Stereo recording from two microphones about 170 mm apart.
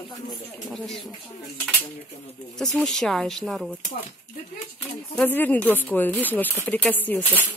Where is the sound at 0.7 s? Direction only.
Centre (ahead or behind).